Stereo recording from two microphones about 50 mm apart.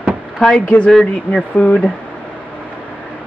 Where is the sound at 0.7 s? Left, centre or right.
Centre.